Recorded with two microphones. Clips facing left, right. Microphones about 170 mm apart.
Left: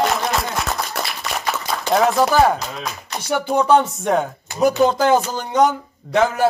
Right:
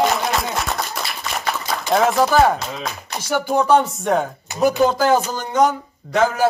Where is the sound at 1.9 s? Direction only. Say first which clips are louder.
Even; centre (ahead or behind).